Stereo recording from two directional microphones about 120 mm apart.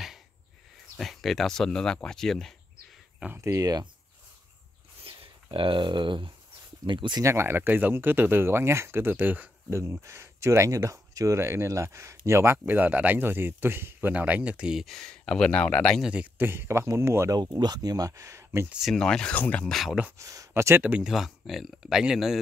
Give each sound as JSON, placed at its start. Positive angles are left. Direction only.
{"t": 0.9, "sound": "speech", "side_deg": 0}
{"t": 3.3, "sound": "speech", "side_deg": -25}
{"t": 5.0, "sound": "speech", "side_deg": -50}
{"t": 7.2, "sound": "speech", "side_deg": -20}
{"t": 16.0, "sound": "speech", "side_deg": -10}
{"t": 17.4, "sound": "speech", "side_deg": -35}
{"t": 18.7, "sound": "speech", "side_deg": 0}
{"t": 19.8, "sound": "speech", "side_deg": 0}
{"t": 20.1, "sound": "speech", "side_deg": -25}